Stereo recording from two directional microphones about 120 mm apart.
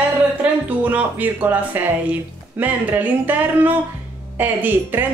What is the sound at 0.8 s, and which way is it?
A woman's voice, 15° right (ahead or behind).